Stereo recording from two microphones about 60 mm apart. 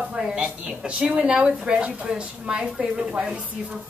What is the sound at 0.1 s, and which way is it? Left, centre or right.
Speech, centre.